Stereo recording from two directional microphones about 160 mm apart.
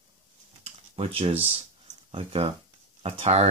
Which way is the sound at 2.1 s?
35° right (ahead or behind).